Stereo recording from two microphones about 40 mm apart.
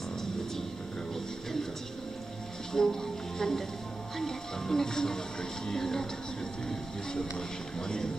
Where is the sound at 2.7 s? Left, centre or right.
Centre.